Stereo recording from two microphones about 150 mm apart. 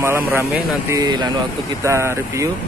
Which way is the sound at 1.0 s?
30° right (ahead or behind).